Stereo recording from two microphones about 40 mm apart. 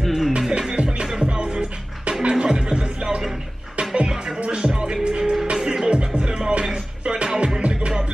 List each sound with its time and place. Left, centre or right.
0.0 s music: centre
0.5 s music: right
4.4 s music: right